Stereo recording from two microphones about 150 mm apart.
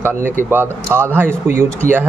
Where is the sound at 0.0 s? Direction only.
15° right (ahead or behind).